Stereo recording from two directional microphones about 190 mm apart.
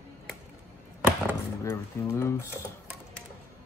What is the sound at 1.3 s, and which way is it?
Speech, 10° left (ahead or behind).